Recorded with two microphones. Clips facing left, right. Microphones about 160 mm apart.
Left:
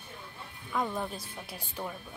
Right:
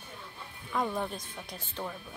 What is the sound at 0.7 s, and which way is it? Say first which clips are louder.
Speech: right 1 dB; centre (ahead or behind).